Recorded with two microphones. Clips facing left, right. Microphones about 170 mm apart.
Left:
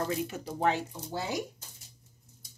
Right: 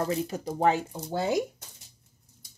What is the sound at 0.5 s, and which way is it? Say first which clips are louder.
Speech: right 5 dB; 45° right (ahead or behind).